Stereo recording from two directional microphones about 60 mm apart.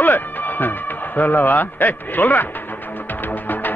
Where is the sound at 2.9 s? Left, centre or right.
Left.